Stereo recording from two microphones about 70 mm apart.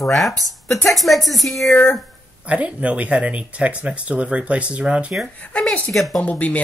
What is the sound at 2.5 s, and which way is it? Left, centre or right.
Speech, centre.